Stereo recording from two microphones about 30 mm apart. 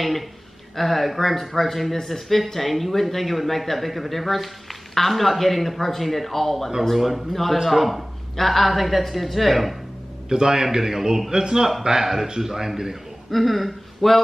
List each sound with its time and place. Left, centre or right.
0.7 s speech: centre
7.0 s speech: centre
10.3 s a man's voice: centre
13.3 s speech: centre